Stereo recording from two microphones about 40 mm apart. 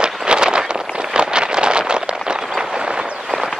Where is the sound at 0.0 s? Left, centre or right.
Right.